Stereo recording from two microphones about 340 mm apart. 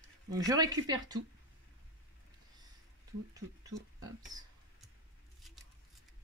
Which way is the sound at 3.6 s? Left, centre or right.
Centre.